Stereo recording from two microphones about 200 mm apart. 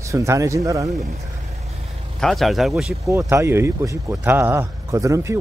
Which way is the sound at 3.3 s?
15° right (ahead or behind).